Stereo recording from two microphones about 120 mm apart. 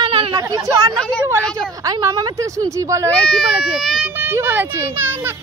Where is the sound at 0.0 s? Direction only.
50° right (ahead or behind).